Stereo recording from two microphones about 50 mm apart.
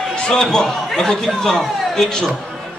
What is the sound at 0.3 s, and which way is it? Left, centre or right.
Speech, centre.